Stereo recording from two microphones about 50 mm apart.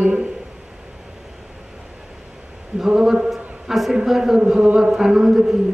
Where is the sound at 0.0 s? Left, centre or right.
Centre.